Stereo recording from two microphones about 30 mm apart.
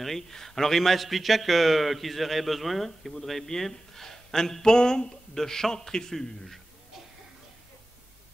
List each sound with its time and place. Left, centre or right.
0.0 s a man's voice: centre